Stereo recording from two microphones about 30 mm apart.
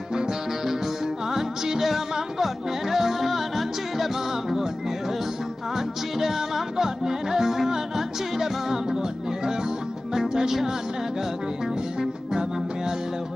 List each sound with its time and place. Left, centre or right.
0.1 s music: right; by 4.6 s centre
5.8 s music: centre
10.1 s music: centre
12.0 s music: right